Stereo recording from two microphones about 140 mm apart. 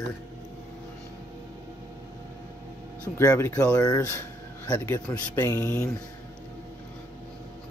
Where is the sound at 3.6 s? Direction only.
25° left (ahead or behind).